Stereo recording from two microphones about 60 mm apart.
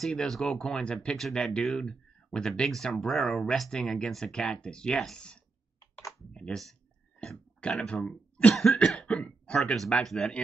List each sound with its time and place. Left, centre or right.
0.1 s speech: centre
6.3 s speech: centre
7.8 s speech: centre
8.7 s cough: centre
9.8 s speech: centre